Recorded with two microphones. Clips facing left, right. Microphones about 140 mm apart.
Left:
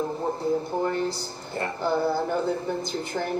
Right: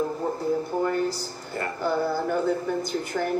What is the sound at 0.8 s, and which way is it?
Speech, 25° left (ahead or behind).